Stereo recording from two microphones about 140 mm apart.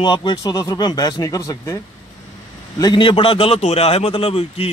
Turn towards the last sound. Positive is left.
turn(degrees=45)  # may be behind; listen again after turning